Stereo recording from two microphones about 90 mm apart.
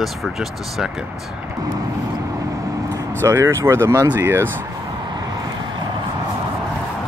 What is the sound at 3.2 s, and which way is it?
Speech, 30° right (ahead or behind).